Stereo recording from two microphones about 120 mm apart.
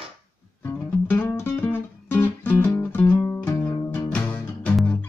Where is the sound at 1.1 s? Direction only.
15° left (ahead or behind).